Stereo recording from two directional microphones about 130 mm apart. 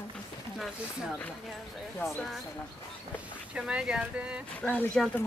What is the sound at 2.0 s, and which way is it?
Speech, centre (ahead or behind).